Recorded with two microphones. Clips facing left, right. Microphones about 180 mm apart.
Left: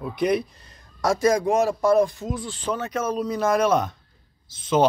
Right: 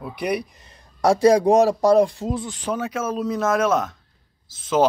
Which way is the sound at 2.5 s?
15° right (ahead or behind).